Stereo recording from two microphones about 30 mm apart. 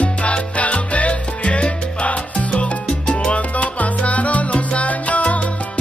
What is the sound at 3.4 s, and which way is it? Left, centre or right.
Salsa music, left.